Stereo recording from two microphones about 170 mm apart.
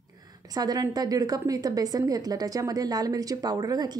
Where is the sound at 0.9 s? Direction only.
25° right (ahead or behind).